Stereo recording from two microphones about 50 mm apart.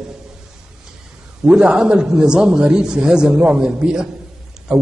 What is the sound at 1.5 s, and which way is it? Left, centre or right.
A man's voice, centre.